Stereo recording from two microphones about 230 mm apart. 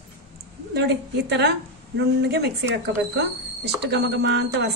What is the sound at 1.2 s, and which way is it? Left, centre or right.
A woman's voice, right.